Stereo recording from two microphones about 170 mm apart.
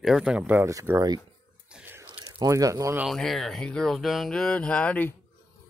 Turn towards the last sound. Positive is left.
turn(degrees=10)  # may be behind; listen again after turning